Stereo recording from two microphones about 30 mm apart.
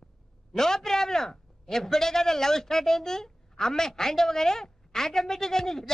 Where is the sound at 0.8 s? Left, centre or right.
Centre.